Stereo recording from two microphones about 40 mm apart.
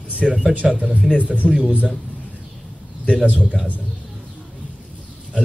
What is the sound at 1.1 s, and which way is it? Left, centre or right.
Speech, right.